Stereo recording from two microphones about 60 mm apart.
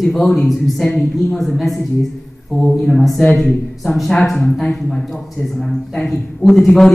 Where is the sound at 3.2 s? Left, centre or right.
Centre.